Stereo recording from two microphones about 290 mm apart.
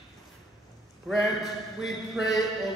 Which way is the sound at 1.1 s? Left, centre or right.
Centre.